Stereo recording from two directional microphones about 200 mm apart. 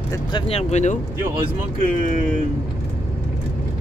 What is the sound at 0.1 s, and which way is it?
Speech, 25° left (ahead or behind).